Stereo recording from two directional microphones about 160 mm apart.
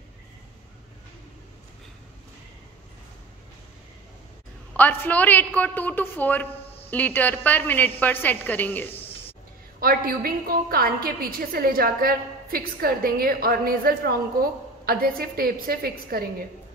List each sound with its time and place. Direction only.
4.7 s a woman's voice: 10° left (ahead or behind)
9.8 s a woman's voice: 65° right (ahead or behind)